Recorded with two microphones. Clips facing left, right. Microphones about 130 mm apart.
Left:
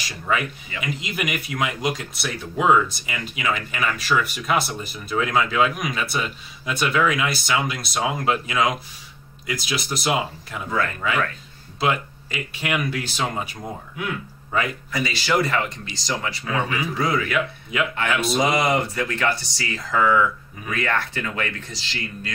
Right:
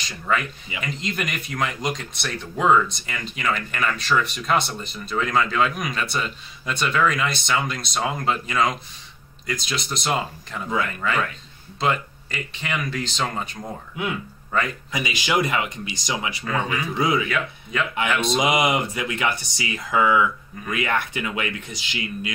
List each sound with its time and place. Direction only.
0.0 s a man's voice: 5° left (ahead or behind)
14.9 s speech: 15° right (ahead or behind)
17.3 s speech: 5° left (ahead or behind)
18.4 s speech: 15° right (ahead or behind)